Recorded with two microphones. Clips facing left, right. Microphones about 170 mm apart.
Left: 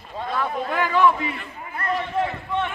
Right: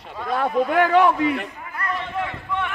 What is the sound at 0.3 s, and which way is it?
A man's voice, 60° right (ahead or behind).